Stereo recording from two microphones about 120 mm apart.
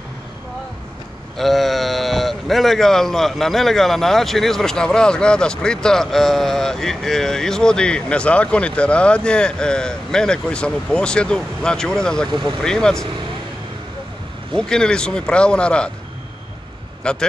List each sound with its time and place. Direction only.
1.3 s speech: centre (ahead or behind)
12.3 s speech: 40° right (ahead or behind)
12.6 s speech: 5° left (ahead or behind)
14.5 s speech: 5° left (ahead or behind)
17.0 s speech: 5° left (ahead or behind)